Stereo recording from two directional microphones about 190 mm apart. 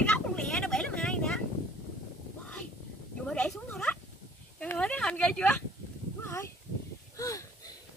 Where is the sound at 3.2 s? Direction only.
5° left (ahead or behind).